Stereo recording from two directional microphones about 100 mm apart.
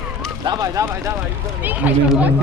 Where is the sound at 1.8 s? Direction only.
15° right (ahead or behind).